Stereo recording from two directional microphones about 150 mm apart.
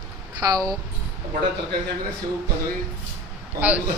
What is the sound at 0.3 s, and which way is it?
Speech, 25° right (ahead or behind).